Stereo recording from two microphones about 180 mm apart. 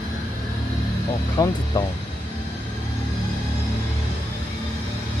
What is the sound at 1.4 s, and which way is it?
Speech, 20° left (ahead or behind).